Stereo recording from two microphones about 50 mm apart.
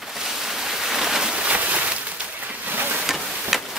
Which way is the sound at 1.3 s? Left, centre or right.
Centre.